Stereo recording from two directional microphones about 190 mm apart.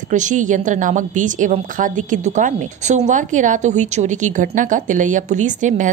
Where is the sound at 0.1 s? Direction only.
40° right (ahead or behind).